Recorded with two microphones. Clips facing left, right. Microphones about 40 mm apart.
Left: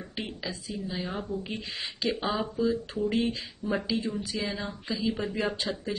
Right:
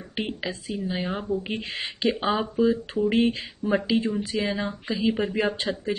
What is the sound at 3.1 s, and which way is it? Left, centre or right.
Speech, right.